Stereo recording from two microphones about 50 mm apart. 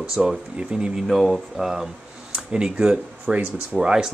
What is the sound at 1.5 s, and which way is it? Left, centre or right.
Speech, centre.